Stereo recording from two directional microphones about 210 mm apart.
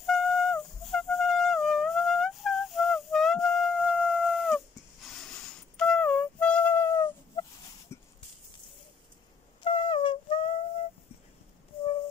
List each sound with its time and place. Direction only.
0.0 s music: centre (ahead or behind)
5.0 s flute: 5° left (ahead or behind)
7.9 s a sound: 15° left (ahead or behind)
9.6 s wind instrument: 25° left (ahead or behind)